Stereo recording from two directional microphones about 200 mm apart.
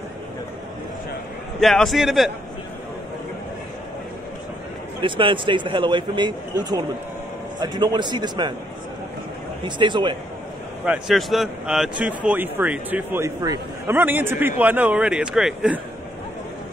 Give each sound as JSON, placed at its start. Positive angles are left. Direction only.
{"t": 1.6, "sound": "a man's voice", "side_deg": 0}
{"t": 5.0, "sound": "speech", "side_deg": -25}
{"t": 9.6, "sound": "speech", "side_deg": -25}
{"t": 10.9, "sound": "a man's voice", "side_deg": 0}